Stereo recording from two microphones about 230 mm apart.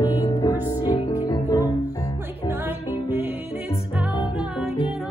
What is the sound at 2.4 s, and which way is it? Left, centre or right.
Music, centre.